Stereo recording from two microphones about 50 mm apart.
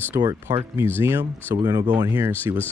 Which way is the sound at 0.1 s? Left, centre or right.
Right.